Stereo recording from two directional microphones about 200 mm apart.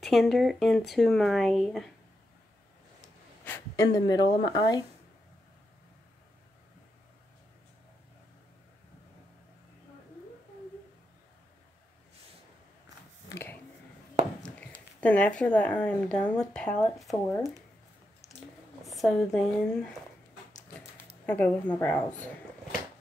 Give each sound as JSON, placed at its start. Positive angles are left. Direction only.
{"t": 0.0, "sound": "speech", "side_deg": 0}
{"t": 3.4, "sound": "a sound", "side_deg": 15}
{"t": 4.5, "sound": "speech", "side_deg": 20}
{"t": 13.3, "sound": "a sound", "side_deg": 10}
{"t": 15.0, "sound": "speech", "side_deg": 5}
{"t": 18.8, "sound": "speech", "side_deg": 0}
{"t": 21.0, "sound": "speech", "side_deg": 10}